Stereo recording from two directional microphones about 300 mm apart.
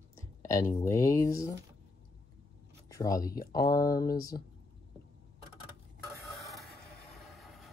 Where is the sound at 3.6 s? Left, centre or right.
Left.